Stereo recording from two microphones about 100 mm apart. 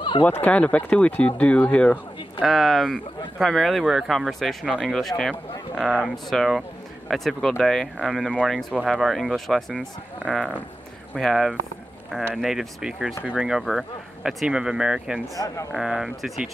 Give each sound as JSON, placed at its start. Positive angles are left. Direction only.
{"t": 0.2, "sound": "speech", "side_deg": 15}
{"t": 2.4, "sound": "speech", "side_deg": 0}
{"t": 11.1, "sound": "speech", "side_deg": 0}
{"t": 15.3, "sound": "speech", "side_deg": 35}
{"t": 15.7, "sound": "speech", "side_deg": -5}